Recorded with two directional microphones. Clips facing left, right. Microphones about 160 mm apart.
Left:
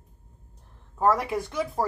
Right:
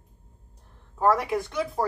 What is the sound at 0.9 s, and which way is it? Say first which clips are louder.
Speech: right 1 dB; centre (ahead or behind).